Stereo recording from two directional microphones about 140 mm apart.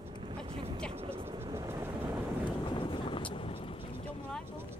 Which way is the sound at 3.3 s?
40° left (ahead or behind).